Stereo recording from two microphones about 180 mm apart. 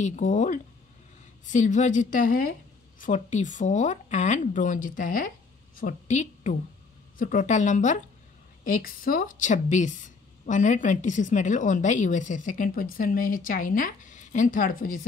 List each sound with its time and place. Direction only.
0.0 s a woman's voice: 45° left (ahead or behind)